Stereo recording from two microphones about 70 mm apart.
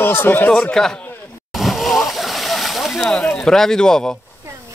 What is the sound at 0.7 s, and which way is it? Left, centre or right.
Speech, centre.